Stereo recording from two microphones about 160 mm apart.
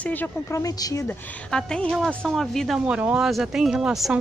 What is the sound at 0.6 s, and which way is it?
Speech, 20° left (ahead or behind).